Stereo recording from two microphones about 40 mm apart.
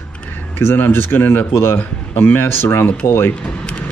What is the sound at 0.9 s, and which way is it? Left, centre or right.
Speech, left.